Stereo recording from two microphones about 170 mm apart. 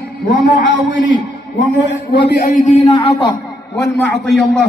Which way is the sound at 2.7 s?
40° left (ahead or behind).